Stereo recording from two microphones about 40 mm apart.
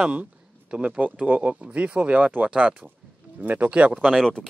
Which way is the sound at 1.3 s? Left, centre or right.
Right.